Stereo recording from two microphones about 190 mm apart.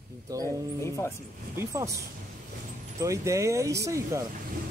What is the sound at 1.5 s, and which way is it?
Speech, 15° right (ahead or behind).